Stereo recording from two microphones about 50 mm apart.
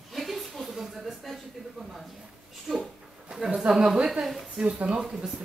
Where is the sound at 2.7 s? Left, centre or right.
Centre.